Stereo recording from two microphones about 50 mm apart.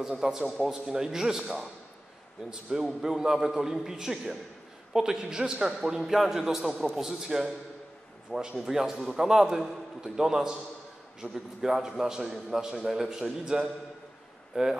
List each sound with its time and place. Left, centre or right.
0.0 s a man's voice: centre
3.0 s a man's voice: centre